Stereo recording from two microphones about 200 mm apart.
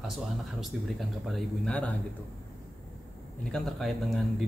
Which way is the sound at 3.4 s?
Centre (ahead or behind).